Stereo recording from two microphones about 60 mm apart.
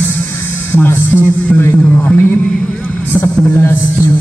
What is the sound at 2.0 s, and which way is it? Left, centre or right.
Music, left.